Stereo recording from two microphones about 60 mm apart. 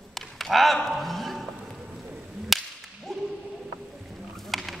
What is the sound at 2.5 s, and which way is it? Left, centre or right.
Whip, centre.